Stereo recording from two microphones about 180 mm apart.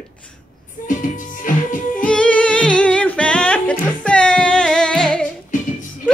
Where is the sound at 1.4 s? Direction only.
45° left (ahead or behind).